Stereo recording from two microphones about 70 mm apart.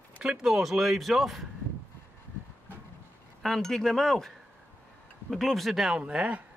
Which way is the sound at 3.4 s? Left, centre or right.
Centre.